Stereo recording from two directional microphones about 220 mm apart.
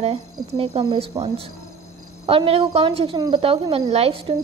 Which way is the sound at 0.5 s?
25° right (ahead or behind).